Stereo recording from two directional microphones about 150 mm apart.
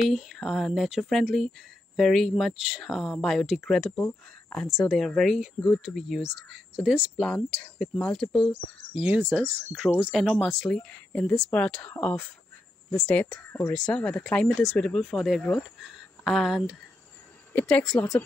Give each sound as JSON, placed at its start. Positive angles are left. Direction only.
{"t": 0.0, "sound": "speech", "side_deg": 0}
{"t": 7.2, "sound": "speech", "side_deg": 5}
{"t": 17.9, "sound": "speech", "side_deg": 20}